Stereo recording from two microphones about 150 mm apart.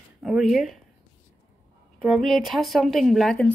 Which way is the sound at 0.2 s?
5° right (ahead or behind).